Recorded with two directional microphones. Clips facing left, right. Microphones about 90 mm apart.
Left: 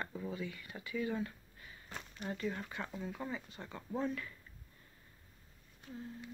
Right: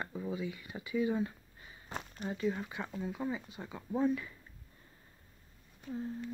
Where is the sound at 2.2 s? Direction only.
10° right (ahead or behind).